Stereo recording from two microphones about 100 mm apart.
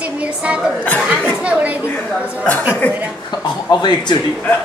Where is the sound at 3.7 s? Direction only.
45° left (ahead or behind).